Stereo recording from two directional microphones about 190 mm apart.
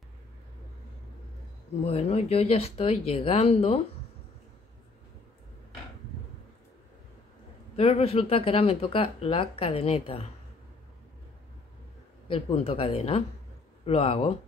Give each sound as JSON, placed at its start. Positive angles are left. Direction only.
{"t": 1.9, "sound": "speech", "side_deg": 35}
{"t": 7.7, "sound": "speech", "side_deg": 30}
{"t": 12.3, "sound": "speech", "side_deg": 30}